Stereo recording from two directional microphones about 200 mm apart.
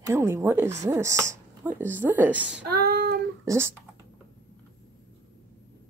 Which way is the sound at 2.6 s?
50° right (ahead or behind).